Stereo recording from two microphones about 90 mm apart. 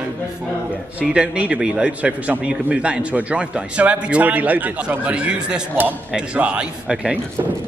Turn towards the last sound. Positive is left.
turn(degrees=-10)  # may be behind; listen again after turning